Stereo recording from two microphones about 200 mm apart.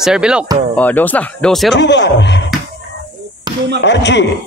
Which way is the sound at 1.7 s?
60° left (ahead or behind).